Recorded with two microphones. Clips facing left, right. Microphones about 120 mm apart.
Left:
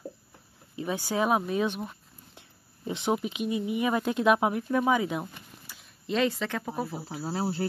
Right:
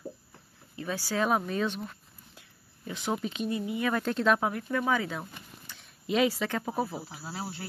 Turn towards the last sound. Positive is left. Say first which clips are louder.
# left 8 dB
turn(degrees=40)  # may be behind; listen again after turning